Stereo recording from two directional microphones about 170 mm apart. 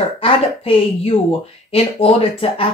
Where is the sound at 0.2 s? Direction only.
30° left (ahead or behind).